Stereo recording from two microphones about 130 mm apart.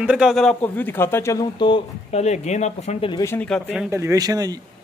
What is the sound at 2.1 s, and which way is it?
Speech, 60° left (ahead or behind).